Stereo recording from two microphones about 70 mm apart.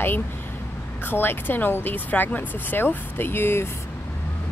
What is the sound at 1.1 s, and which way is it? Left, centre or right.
A woman's voice, left.